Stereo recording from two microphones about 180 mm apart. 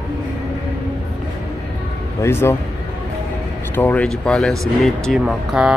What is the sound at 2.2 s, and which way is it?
Speech, 15° left (ahead or behind).